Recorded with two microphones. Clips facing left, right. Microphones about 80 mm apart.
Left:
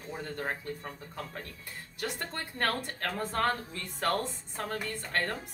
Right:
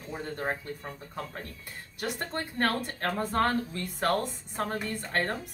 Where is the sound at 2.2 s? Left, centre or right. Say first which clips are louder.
Right 4 dB; right.